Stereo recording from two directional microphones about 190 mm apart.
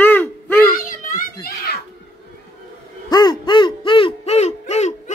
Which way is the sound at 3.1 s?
20° left (ahead or behind).